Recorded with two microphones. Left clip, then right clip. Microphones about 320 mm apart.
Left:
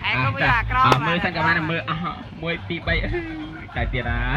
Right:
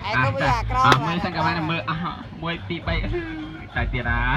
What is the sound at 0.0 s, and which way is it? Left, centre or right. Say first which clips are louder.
Speech: left 1 dB; centre.